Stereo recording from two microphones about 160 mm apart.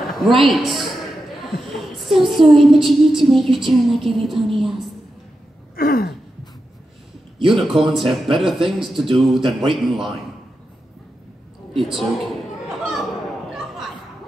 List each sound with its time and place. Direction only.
0.4 s a woman's voice: centre (ahead or behind)
1.5 s a sound: centre (ahead or behind)
2.5 s a woman's voice: centre (ahead or behind)
5.8 s gasp: 65° left (ahead or behind)
7.3 s a woman's voice: centre (ahead or behind)
11.7 s a woman's voice: centre (ahead or behind)
12.6 s chatter: centre (ahead or behind)
13.5 s a sound: centre (ahead or behind)